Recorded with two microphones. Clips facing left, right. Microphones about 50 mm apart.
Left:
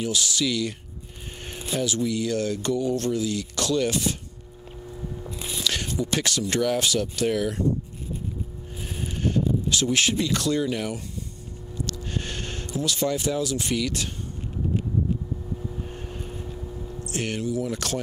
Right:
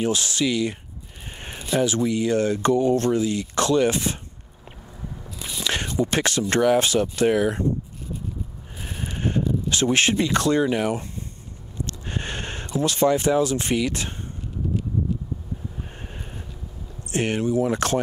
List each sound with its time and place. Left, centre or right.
0.0 s speech: right
5.6 s speech: right
8.8 s a sound: right
11.8 s speech: right
15.9 s vehicle: right
17.0 s speech: right